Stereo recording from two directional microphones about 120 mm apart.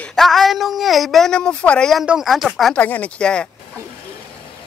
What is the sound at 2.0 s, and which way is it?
Speech, 5° right (ahead or behind).